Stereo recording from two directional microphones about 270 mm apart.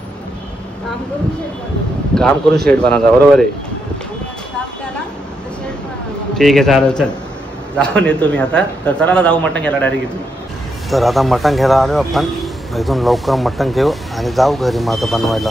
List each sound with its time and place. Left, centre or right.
2.1 s speech: centre
6.3 s speech: centre